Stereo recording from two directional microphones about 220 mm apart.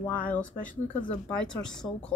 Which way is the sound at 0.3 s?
5° left (ahead or behind).